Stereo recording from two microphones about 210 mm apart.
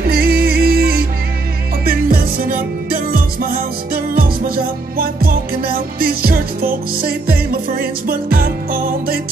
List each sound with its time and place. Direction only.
0.0 s music: 45° right (ahead or behind)